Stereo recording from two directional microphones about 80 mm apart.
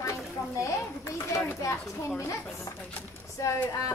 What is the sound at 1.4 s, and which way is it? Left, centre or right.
Speech, left.